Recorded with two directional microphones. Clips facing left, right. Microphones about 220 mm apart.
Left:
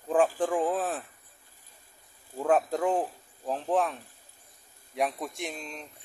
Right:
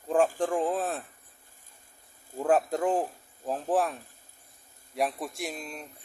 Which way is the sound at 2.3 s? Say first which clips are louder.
Even; centre (ahead or behind).